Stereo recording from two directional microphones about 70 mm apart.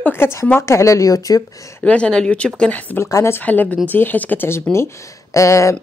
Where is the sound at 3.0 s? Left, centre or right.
Left.